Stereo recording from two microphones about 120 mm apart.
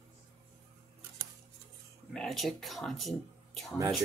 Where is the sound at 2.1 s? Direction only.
5° left (ahead or behind).